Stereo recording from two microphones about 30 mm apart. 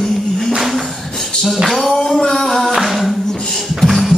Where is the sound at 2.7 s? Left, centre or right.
Centre.